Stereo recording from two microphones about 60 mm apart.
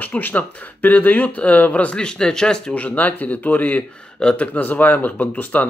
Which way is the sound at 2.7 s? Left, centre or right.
Left.